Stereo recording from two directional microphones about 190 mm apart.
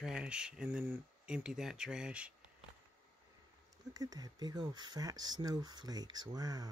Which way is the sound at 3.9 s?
20° right (ahead or behind).